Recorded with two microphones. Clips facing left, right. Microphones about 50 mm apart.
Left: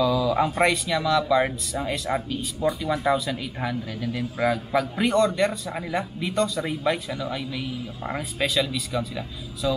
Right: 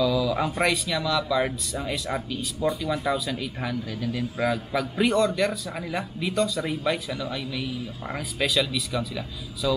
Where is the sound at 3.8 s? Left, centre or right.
Left; by 6.3 s centre.